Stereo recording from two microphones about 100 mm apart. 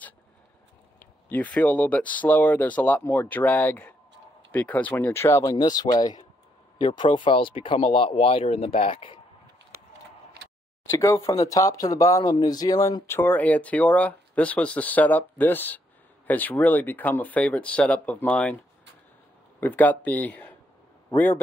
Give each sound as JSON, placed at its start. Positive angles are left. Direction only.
{"t": 0.9, "sound": "speech", "side_deg": 15}
{"t": 5.4, "sound": "speech", "side_deg": 40}
{"t": 6.8, "sound": "speech", "side_deg": 55}
{"t": 10.9, "sound": "speech", "side_deg": 30}
{"t": 19.6, "sound": "speech", "side_deg": 15}